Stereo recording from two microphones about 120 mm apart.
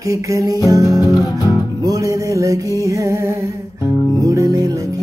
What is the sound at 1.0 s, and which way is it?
Music, 30° left (ahead or behind).